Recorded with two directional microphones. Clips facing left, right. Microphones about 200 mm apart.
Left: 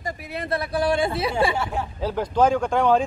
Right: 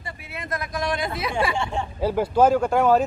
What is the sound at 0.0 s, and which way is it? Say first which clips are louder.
Speech: left 6 dB; 40° left (ahead or behind).